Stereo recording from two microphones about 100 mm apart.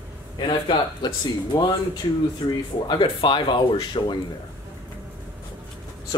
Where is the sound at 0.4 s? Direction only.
55° left (ahead or behind).